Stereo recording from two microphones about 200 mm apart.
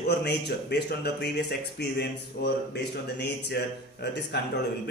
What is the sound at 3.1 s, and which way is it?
Speech, 55° left (ahead or behind).